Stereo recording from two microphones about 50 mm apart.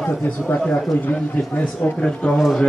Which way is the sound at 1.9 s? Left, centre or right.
Centre.